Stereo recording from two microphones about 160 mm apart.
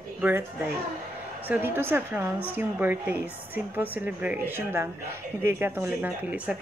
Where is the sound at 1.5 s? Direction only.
15° right (ahead or behind).